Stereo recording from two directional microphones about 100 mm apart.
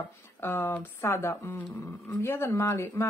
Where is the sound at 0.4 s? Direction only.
25° left (ahead or behind).